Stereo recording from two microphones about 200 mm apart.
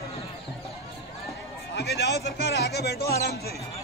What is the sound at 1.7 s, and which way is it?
A man's voice, 55° left (ahead or behind).